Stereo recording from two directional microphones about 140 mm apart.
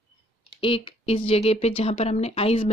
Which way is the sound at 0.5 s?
40° left (ahead or behind).